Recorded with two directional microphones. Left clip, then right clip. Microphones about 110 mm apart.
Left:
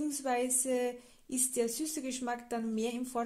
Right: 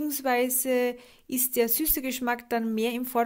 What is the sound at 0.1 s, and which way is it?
Speech, 20° right (ahead or behind).